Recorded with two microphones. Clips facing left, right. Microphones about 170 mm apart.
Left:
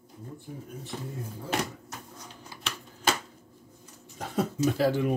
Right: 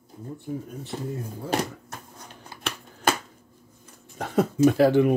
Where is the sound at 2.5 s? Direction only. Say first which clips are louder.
Right 5 dB; 55° right (ahead or behind).